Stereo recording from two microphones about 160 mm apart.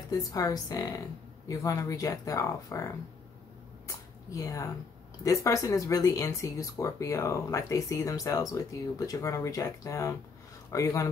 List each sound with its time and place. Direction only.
0.1 s speech: 20° left (ahead or behind)
3.8 s a sound: 20° left (ahead or behind)
5.2 s speech: 20° left (ahead or behind)